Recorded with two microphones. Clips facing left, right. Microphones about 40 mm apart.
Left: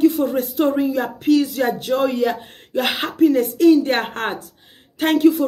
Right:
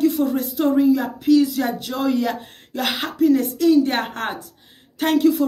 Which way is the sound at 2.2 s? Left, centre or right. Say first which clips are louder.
Left 3 dB; centre.